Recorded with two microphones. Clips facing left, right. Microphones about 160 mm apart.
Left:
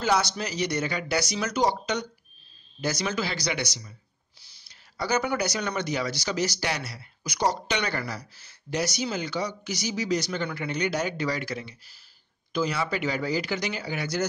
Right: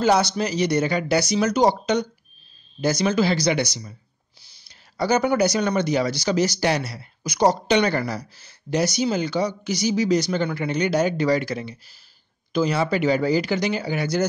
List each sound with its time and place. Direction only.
0.0 s speech: 25° right (ahead or behind)
0.7 s speech: 35° right (ahead or behind)
4.9 s speech: 35° right (ahead or behind)